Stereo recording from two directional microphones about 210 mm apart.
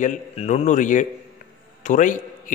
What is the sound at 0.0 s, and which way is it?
A man's voice, 35° left (ahead or behind).